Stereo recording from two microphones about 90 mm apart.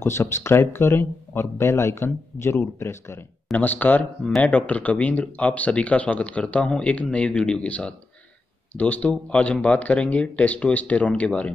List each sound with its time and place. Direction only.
0.0 s speech: 30° left (ahead or behind)
3.5 s speech: 20° left (ahead or behind)